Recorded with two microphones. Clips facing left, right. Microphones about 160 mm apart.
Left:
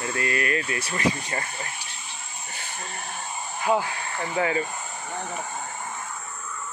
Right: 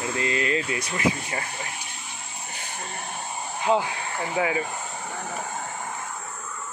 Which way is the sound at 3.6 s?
20° right (ahead or behind).